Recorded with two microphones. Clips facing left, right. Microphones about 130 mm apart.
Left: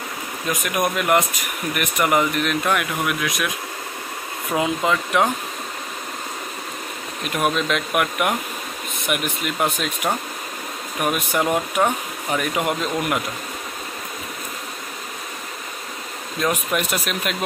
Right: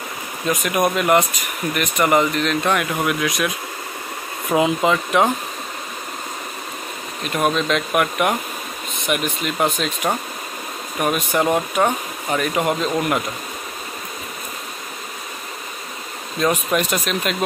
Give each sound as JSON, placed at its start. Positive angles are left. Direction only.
{"t": 0.5, "sound": "speech", "side_deg": 0}
{"t": 4.6, "sound": "speech", "side_deg": -5}
{"t": 7.2, "sound": "speech", "side_deg": 5}
{"t": 11.0, "sound": "speech", "side_deg": 5}
{"t": 16.3, "sound": "speech", "side_deg": 5}